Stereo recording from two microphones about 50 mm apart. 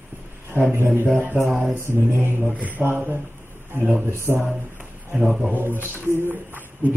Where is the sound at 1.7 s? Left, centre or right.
Right.